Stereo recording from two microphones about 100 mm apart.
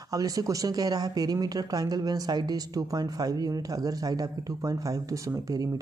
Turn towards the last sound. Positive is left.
turn(degrees=-35)  # may be behind; listen again after turning